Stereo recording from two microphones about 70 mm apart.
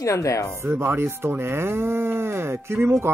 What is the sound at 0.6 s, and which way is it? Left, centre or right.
Speech, right.